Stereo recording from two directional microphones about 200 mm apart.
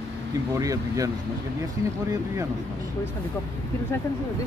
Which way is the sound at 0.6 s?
15° right (ahead or behind).